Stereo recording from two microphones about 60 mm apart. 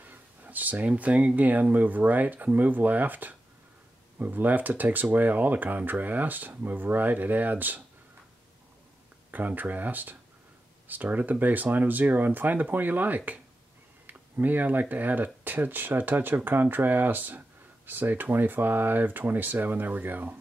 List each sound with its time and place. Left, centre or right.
0.0 s speech: right
9.3 s speech: right